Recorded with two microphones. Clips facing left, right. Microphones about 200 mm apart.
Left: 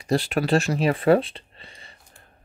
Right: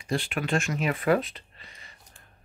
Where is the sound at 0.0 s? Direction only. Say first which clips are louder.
Left 7 dB; 40° left (ahead or behind).